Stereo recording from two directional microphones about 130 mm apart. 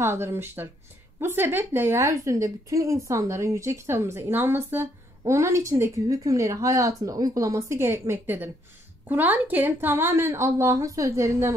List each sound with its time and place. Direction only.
0.0 s a woman's voice: 20° right (ahead or behind)